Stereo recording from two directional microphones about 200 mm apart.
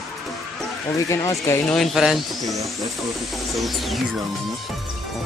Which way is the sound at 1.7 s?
Centre (ahead or behind).